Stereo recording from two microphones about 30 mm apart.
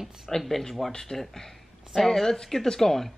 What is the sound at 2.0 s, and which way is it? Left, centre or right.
Speech, centre.